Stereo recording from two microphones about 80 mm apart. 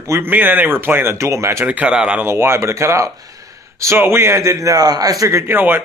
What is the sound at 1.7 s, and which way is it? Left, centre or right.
Speech, centre.